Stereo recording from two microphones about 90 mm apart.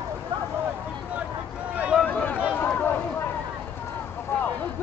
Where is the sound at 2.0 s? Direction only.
20° left (ahead or behind).